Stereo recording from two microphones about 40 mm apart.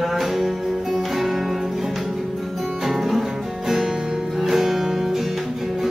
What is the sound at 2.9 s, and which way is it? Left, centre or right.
Music, centre.